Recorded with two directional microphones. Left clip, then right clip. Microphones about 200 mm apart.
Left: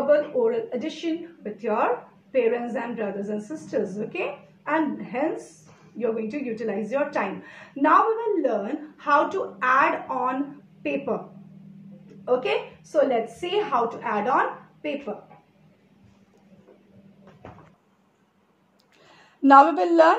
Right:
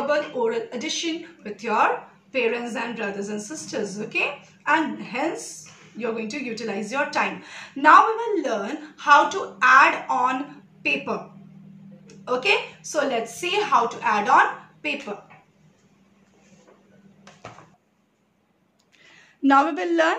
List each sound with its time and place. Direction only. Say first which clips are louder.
0.1 s a woman's voice: left 4 dB; 20° right (ahead or behind)
12.3 s a woman's voice: right 2 dB; 20° right (ahead or behind)
19.4 s a woman's voice: left 4 dB; 30° right (ahead or behind)